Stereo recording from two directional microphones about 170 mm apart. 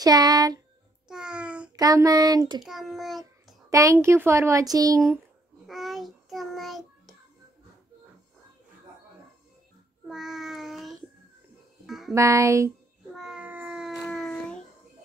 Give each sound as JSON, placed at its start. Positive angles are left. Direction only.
{"t": 0.0, "sound": "speech", "side_deg": -20}
{"t": 1.0, "sound": "babbling", "side_deg": -5}
{"t": 1.8, "sound": "speech", "side_deg": -20}
{"t": 2.6, "sound": "a child's voice", "side_deg": 0}
{"t": 3.7, "sound": "speech", "side_deg": -20}
{"t": 5.7, "sound": "child singing", "side_deg": 0}
{"t": 10.0, "sound": "child singing", "side_deg": 0}
{"t": 11.8, "sound": "music", "side_deg": 0}
{"t": 12.1, "sound": "music", "side_deg": -20}
{"t": 13.1, "sound": "a sound", "side_deg": -5}
{"t": 14.0, "sound": "child singing", "side_deg": 5}